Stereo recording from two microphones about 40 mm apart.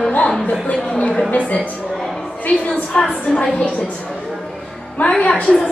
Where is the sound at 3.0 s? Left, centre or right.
Centre.